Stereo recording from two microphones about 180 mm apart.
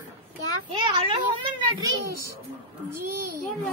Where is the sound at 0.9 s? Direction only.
25° right (ahead or behind).